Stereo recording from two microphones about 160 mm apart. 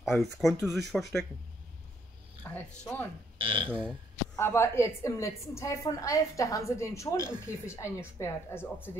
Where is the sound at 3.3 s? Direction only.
35° right (ahead or behind).